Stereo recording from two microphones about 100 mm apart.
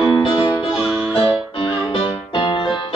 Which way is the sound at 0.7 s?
15° right (ahead or behind).